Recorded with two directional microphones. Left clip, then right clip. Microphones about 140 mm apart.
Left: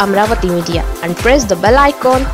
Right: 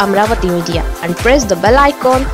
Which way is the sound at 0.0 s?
Centre (ahead or behind).